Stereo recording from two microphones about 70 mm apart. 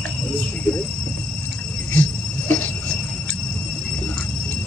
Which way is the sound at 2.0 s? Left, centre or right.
Left.